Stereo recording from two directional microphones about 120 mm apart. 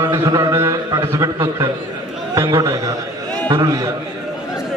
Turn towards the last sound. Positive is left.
turn(degrees=-30)  # may be behind; listen again after turning